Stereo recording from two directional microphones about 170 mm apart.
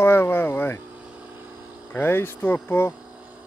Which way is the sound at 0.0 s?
15° left (ahead or behind).